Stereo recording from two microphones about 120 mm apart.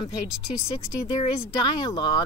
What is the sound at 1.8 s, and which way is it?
Speech, 40° left (ahead or behind).